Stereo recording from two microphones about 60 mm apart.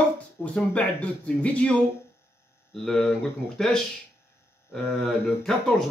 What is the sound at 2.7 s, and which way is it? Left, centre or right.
Speech, centre.